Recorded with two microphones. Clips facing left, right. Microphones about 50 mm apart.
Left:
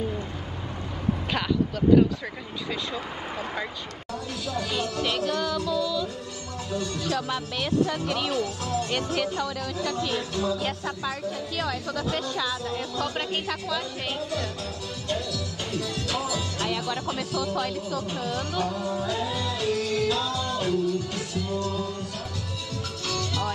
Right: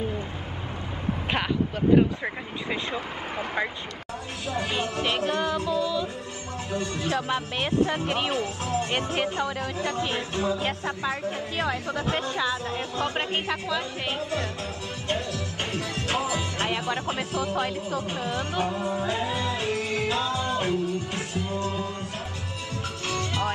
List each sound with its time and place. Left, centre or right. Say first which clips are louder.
2.7 s speech: right 2 dB; right
15.0 s speech: right 1 dB; right
23.0 s music: right 1 dB; right